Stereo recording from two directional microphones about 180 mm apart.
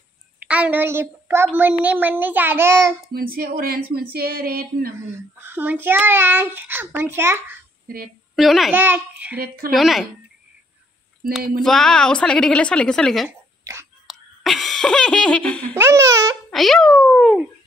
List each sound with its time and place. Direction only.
0.4 s a child's voice: 10° right (ahead or behind)
3.1 s speech: 55° right (ahead or behind)
5.4 s a child's voice: 10° right (ahead or behind)
8.4 s a woman's voice: centre (ahead or behind)
8.7 s a child's voice: 10° right (ahead or behind)
9.4 s speech: 55° right (ahead or behind)
9.8 s a woman's voice: centre (ahead or behind)
11.6 s a woman's voice: 5° left (ahead or behind)
13.3 s a sound: 15° right (ahead or behind)
14.0 s speech: centre (ahead or behind)
15.7 s a child's voice: 15° right (ahead or behind)
16.4 s a woman's voice: centre (ahead or behind)